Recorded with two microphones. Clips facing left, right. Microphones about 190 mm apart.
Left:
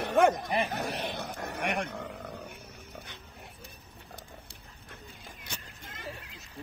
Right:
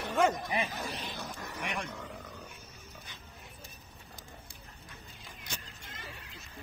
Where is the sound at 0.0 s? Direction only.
60° left (ahead or behind).